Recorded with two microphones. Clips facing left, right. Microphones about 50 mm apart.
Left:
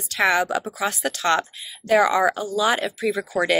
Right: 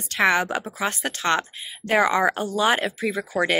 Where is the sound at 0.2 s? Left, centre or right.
Right.